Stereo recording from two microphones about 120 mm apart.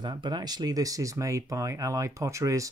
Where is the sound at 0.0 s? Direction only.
40° right (ahead or behind).